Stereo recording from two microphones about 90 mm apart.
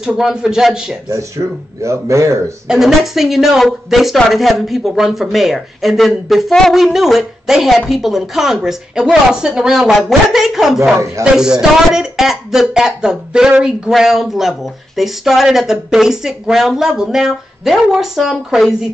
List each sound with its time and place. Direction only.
0.0 s a man's voice: 5° right (ahead or behind)
1.0 s speech: 35° right (ahead or behind)
2.7 s speech: 5° right (ahead or behind)
11.2 s speech: 35° right (ahead or behind)
11.9 s speech: 5° right (ahead or behind)